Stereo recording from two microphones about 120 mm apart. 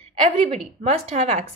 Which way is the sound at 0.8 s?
65° right (ahead or behind).